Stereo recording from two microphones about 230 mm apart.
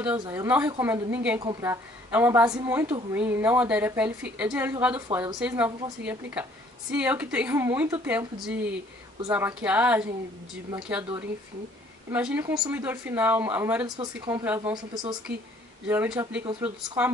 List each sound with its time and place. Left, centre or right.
0.2 s a woman's voice: centre
5.1 s a woman's voice: centre
12.1 s a woman's voice: centre